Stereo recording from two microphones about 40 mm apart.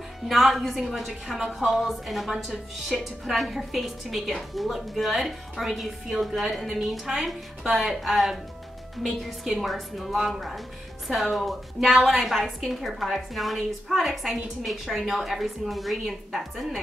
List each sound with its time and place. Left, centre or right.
0.2 s a woman's voice: centre
2.3 s a woman's voice: centre